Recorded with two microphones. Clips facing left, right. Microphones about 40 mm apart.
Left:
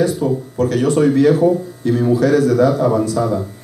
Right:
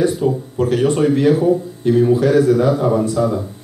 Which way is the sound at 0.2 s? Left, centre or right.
Right.